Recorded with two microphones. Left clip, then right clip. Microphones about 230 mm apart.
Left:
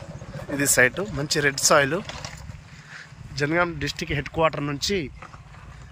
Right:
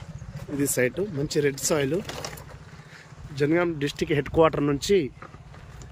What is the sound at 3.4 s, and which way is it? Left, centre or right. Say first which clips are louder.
Speech: even; centre.